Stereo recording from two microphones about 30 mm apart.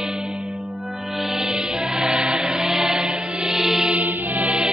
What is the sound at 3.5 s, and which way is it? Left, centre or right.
Music, centre.